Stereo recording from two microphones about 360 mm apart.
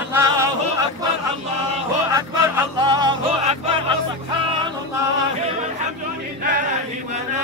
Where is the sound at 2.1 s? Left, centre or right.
Centre.